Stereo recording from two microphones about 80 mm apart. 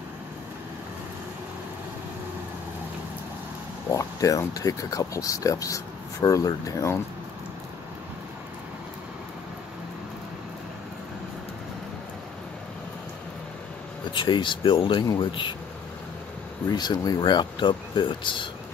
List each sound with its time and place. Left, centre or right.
3.9 s speech: left
14.1 s speech: left
16.7 s speech: left
17.2 s speech: left